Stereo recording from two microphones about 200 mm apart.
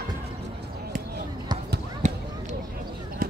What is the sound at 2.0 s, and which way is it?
Basketball bounce, 35° right (ahead or behind).